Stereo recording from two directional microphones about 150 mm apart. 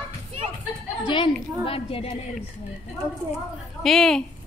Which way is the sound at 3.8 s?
Centre (ahead or behind).